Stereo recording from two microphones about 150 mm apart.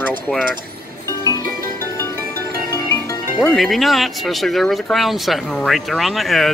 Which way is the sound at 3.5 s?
Centre (ahead or behind).